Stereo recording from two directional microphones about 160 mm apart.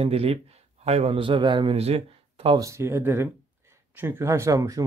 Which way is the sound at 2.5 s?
20° right (ahead or behind).